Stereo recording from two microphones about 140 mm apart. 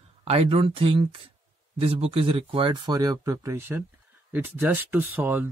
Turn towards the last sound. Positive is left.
turn(degrees=-15)  # may be behind; listen again after turning